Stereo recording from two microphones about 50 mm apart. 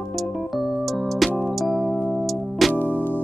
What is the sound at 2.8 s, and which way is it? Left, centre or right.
Music, left.